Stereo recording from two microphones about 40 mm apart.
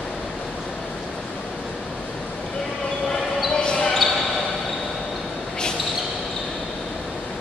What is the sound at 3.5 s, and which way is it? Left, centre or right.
Basketball bounce, left.